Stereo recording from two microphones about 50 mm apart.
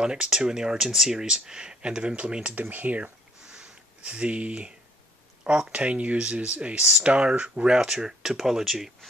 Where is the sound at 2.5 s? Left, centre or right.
Right; by 8.9 s centre.